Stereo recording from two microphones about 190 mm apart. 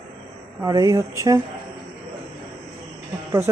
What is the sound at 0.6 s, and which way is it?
Speech, 20° right (ahead or behind).